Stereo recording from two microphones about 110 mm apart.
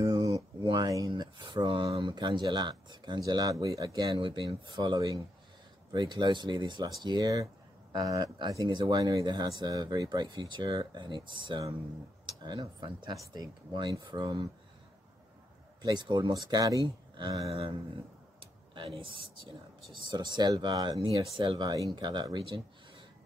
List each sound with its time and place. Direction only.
0.0 s a sound: 30° right (ahead or behind); by 2.4 s 45° right (ahead or behind)
2.4 s speech: 40° right (ahead or behind)
13.1 s speech: 35° right (ahead or behind)
15.8 s speech: 40° right (ahead or behind)
17.5 s speech: 60° right (ahead or behind)
18.4 s a sound: 50° right (ahead or behind)
20.1 s speech: 40° right (ahead or behind)